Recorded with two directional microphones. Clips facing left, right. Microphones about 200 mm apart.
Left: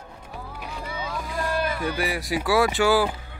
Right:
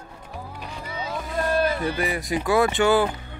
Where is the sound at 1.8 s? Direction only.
Centre (ahead or behind).